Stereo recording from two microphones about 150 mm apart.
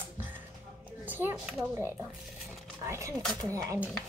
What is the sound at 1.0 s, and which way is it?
Speech, 10° right (ahead or behind).